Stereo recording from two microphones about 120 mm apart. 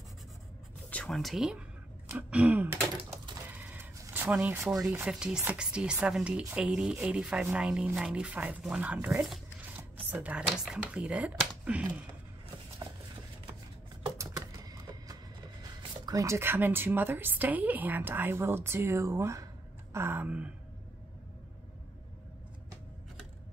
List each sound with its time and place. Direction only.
1.0 s speech: centre (ahead or behind)
2.1 s speech: 15° right (ahead or behind)
3.5 s a sound: 15° right (ahead or behind)
4.1 s speech: 15° right (ahead or behind)
14.1 s typing: 30° right (ahead or behind)
15.9 s speech: 30° right (ahead or behind); by 20.5 s 10° right (ahead or behind)